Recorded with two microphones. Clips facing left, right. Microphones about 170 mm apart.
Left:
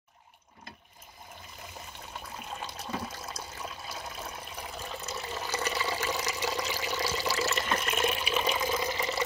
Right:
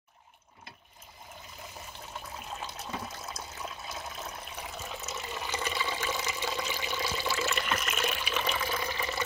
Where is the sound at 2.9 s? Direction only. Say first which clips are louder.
Left 4 dB; 10° left (ahead or behind).